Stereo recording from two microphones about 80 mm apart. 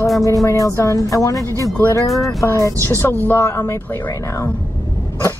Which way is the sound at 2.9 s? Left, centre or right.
Left.